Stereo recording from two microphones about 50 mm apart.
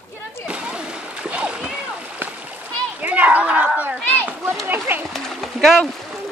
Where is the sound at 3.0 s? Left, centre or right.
Right.